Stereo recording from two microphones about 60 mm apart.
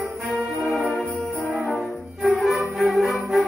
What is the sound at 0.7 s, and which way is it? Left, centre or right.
Jingle bell, centre.